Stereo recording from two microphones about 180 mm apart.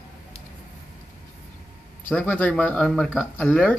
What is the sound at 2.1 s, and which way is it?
Speech, 10° left (ahead or behind).